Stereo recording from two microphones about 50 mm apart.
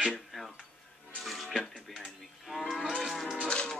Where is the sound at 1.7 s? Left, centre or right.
Centre.